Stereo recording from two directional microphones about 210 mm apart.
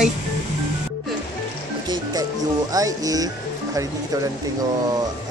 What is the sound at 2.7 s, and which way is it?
Speech, 15° right (ahead or behind).